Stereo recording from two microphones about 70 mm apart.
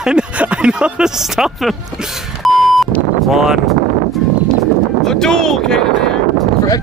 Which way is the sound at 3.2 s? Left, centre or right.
Centre.